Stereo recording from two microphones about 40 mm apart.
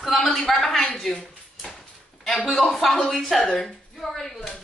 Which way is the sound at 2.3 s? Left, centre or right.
Centre.